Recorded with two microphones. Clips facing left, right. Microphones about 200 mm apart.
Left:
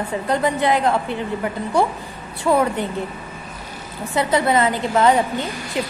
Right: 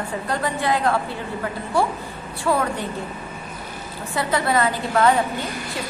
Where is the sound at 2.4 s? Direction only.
20° left (ahead or behind).